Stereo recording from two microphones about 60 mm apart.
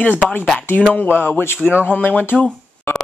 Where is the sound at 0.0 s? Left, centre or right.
Left.